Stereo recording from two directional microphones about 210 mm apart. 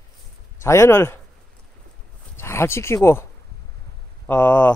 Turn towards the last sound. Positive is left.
turn(degrees=5)  # may be behind; listen again after turning